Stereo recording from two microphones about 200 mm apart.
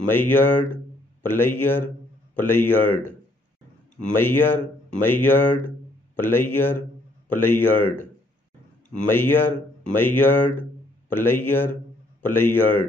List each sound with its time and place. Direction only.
0.1 s speech: 10° left (ahead or behind)
4.1 s speech: 10° left (ahead or behind)